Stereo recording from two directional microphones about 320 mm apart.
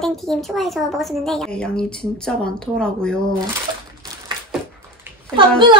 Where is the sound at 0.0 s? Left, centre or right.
Centre.